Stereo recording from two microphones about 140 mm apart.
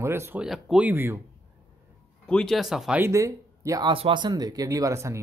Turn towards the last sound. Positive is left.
turn(degrees=-20)  # may be behind; listen again after turning